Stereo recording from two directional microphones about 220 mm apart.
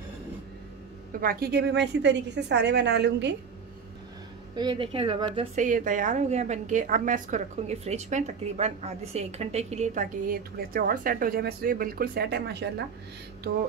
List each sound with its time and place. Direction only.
1.2 s a woman's voice: 45° right (ahead or behind)
4.6 s a woman's voice: 20° right (ahead or behind)
5.7 s a woman's voice: 35° right (ahead or behind)